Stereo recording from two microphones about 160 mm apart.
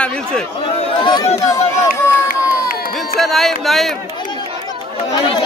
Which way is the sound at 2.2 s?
65° left (ahead or behind).